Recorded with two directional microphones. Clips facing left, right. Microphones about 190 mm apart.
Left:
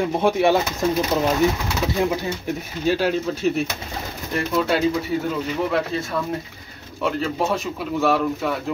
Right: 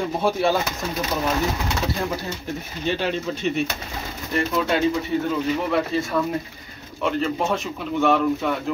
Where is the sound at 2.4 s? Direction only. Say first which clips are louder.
Left 4 dB; 5° left (ahead or behind).